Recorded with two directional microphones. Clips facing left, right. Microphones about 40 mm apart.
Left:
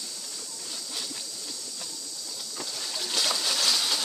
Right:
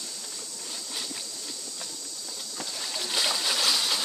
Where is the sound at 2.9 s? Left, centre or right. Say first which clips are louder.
Right 1 dB; centre.